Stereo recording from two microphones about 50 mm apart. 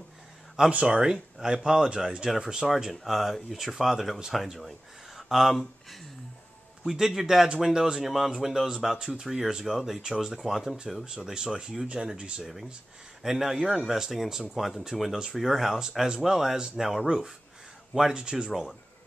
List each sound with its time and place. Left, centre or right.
0.7 s speech: right
2.7 s speech: centre
6.9 s speech: centre
10.4 s speech: centre
11.1 s speech: centre
13.2 s speech: centre
17.9 s speech: centre